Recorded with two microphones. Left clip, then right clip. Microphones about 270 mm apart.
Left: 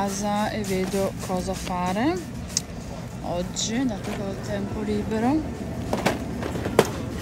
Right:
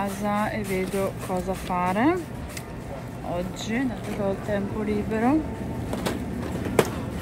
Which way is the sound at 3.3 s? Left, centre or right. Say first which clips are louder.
Left 1 dB; centre.